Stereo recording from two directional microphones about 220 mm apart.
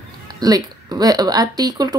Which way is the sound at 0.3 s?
15° right (ahead or behind).